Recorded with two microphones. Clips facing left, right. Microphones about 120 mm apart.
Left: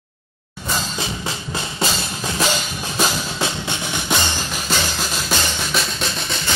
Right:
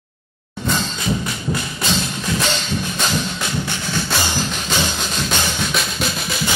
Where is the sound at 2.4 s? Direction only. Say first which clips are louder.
Left 1 dB; 10° left (ahead or behind).